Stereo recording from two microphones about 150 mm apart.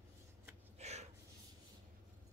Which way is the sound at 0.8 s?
45° right (ahead or behind).